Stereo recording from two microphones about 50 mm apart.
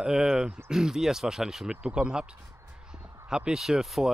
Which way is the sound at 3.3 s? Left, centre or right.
Centre.